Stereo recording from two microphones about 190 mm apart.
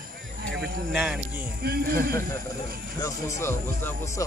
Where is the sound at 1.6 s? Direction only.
55° right (ahead or behind).